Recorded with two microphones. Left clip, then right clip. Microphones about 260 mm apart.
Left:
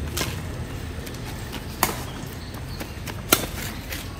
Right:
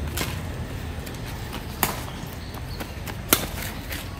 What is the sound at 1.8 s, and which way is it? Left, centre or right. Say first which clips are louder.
Horse: left 2 dB; centre.